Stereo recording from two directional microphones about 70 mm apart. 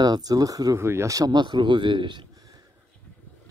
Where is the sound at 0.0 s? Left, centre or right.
Right.